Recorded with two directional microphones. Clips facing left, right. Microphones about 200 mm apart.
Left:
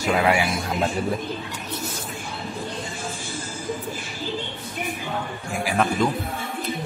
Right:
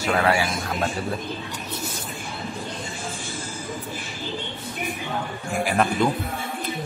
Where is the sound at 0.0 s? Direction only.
15° left (ahead or behind).